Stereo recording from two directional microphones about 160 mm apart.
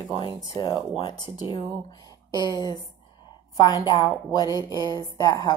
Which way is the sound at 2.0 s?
25° left (ahead or behind).